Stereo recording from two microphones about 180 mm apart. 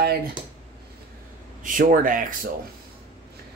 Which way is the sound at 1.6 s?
50° right (ahead or behind).